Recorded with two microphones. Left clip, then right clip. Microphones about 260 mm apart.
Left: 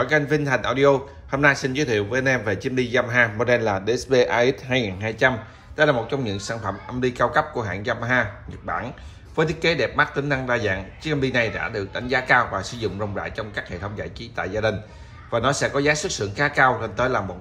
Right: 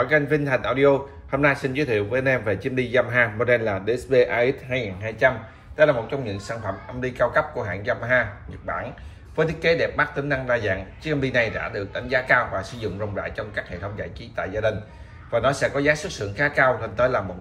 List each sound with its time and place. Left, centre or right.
0.0 s speech: centre